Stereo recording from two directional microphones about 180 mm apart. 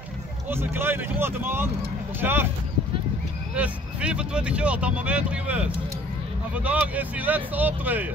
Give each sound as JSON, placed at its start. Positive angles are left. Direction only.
{"t": 0.5, "sound": "speech", "side_deg": -10}
{"t": 3.5, "sound": "speech", "side_deg": -5}